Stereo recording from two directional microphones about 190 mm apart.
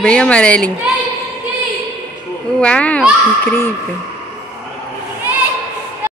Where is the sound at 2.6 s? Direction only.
5° left (ahead or behind).